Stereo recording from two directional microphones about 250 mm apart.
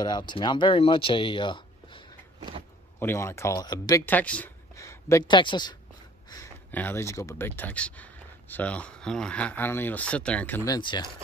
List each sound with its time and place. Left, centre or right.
0.0 s speech: centre